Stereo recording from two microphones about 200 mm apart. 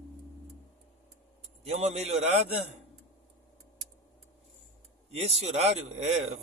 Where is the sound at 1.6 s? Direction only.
30° right (ahead or behind).